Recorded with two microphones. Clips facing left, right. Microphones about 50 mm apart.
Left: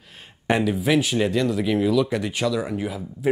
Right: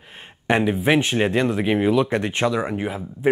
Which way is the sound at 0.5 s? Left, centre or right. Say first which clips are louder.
Right 2 dB; right.